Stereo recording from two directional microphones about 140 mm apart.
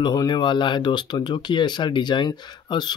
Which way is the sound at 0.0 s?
30° left (ahead or behind).